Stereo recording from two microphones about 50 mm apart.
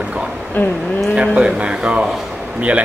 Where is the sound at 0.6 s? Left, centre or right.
Left.